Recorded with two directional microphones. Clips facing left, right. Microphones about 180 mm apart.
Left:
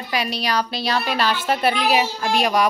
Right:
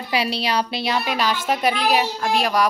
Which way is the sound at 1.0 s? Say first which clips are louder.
Left 1 dB; 5° right (ahead or behind).